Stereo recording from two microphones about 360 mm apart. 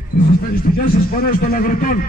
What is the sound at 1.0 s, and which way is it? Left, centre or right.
A man's voice, left.